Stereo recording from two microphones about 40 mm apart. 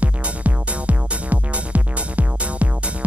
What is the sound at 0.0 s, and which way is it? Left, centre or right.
Music, right.